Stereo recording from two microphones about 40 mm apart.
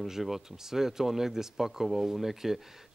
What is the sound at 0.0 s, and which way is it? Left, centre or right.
Speech, centre.